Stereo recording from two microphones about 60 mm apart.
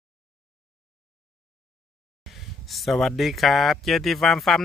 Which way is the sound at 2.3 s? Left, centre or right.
Centre.